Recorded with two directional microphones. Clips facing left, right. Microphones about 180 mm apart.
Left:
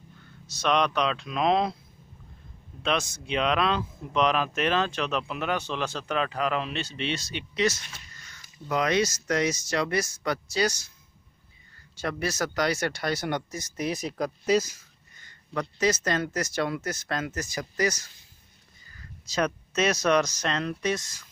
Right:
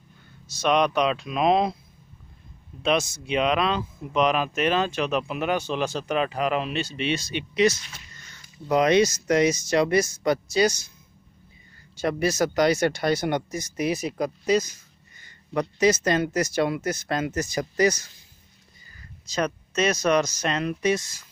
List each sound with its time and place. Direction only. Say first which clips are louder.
0.6 s speech: right 3 dB; 10° right (ahead or behind)
2.8 s speech: right 4 dB; 10° right (ahead or behind)
12.0 s speech: right 6 dB; 15° right (ahead or behind); by 14.8 s 5° left (ahead or behind)
15.5 s speech: right 5 dB; 15° right (ahead or behind)
19.2 s speech: right 1 dB; 5° left (ahead or behind)
20.3 s speech: right 3 dB; 10° right (ahead or behind)